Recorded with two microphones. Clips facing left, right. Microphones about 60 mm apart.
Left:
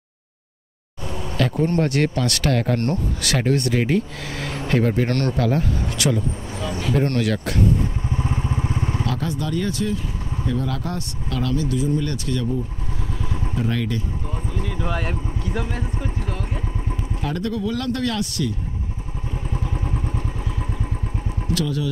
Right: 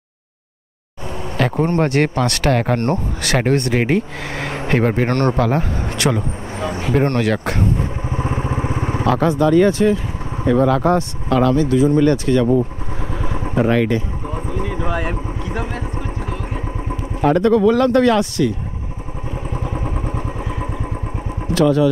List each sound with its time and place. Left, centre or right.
1.4 s speech: right
8.0 s vehicle: right
10.6 s speech: right
12.4 s speech: right
13.2 s vehicle: right
13.6 s speech: right
13.8 s a sound: right
14.5 s vehicle: right
14.9 s speech: centre
16.2 s vehicle: centre
17.2 s speech: right
19.5 s vehicle: right